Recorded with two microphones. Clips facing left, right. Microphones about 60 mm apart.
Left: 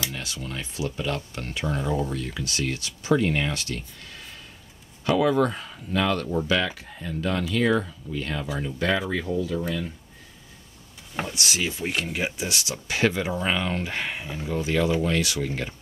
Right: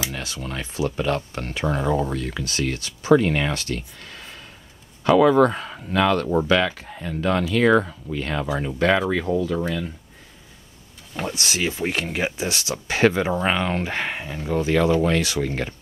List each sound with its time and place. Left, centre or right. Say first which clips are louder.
0.2 s speech: right 3 dB; right
1.4 s speech: right 4 dB; right
1.8 s speech: right 4 dB; right
2.4 s speech: right 3 dB; right
5.0 s speech: right 6 dB; right
9.2 s speech: right 4 dB; right
11.3 s speech: right 3 dB; right
14.7 s speech: right 4 dB; right